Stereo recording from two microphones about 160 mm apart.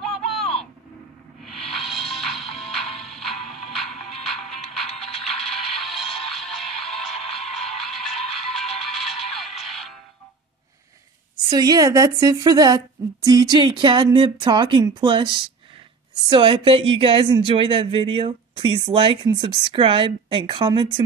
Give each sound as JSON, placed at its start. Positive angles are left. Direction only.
{"t": 0.0, "sound": "a sound", "side_deg": 0}
{"t": 1.4, "sound": "music", "side_deg": 0}
{"t": 11.4, "sound": "a woman's voice", "side_deg": -25}